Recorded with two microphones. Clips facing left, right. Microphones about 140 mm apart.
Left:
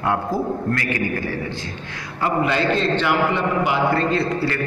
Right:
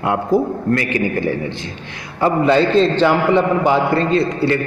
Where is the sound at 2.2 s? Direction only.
30° right (ahead or behind).